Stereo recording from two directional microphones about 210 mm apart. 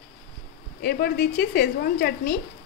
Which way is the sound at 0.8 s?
45° left (ahead or behind).